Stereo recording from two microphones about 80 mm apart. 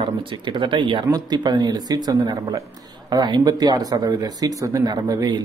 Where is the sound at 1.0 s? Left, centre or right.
Right.